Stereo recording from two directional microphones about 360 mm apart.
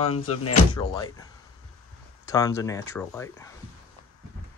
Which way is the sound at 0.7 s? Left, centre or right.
Centre.